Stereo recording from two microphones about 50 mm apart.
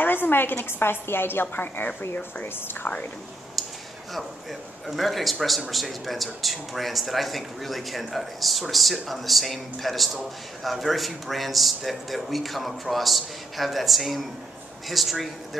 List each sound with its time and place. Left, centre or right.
0.0 s a woman's voice: left
3.6 s a sound: centre
4.1 s speech: centre